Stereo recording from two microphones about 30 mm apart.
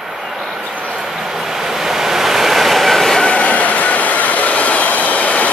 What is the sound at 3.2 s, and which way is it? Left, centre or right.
Train, left.